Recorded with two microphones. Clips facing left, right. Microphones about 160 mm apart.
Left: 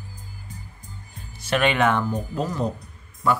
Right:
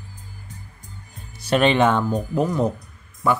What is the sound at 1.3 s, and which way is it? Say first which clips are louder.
Speech: right 4 dB; 30° right (ahead or behind).